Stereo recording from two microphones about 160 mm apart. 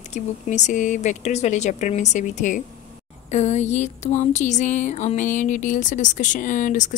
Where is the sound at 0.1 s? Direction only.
50° left (ahead or behind).